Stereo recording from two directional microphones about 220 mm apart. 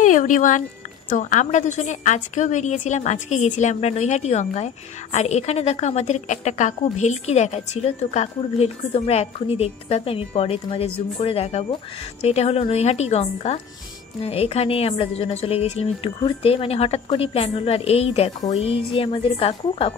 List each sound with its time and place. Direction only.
0.0 s a woman's voice: 35° left (ahead or behind)